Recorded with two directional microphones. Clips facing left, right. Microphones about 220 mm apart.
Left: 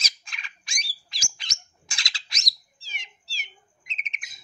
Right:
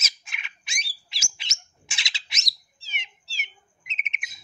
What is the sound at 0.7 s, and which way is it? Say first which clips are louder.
Bird: right 2 dB; 25° right (ahead or behind).